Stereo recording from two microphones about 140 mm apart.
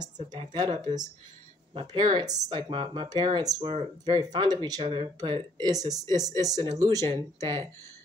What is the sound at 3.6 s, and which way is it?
Speech, 50° right (ahead or behind).